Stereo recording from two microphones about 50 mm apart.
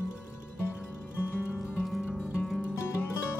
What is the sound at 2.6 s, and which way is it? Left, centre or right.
Music, left.